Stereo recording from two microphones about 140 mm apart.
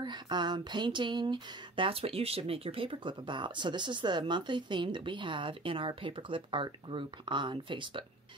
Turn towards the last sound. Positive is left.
turn(degrees=-35)  # may be behind; listen again after turning